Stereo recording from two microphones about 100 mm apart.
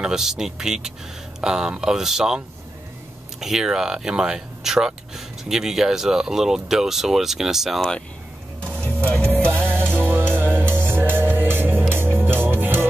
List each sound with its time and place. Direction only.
0.0 s speech: 5° right (ahead or behind)
9.5 s music: 20° right (ahead or behind)